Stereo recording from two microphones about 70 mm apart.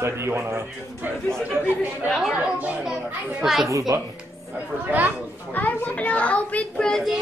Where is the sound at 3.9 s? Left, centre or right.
Right.